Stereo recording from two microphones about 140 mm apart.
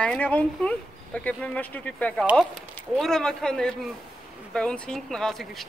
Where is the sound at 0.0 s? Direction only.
10° left (ahead or behind).